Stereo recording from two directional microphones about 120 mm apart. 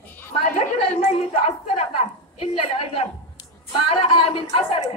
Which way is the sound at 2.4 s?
55° left (ahead or behind).